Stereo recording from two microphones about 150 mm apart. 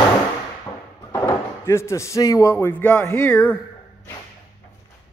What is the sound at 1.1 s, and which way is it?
A man's voice, 20° left (ahead or behind).